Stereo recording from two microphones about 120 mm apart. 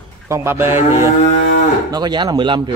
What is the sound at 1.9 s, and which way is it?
Speech, 35° right (ahead or behind).